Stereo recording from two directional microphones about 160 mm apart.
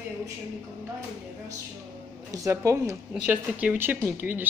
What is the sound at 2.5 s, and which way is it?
Speech, 20° right (ahead or behind).